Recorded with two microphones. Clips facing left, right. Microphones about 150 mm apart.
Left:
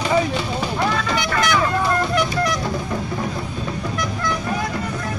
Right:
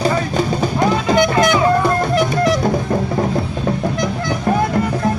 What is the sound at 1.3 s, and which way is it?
Music, 25° right (ahead or behind).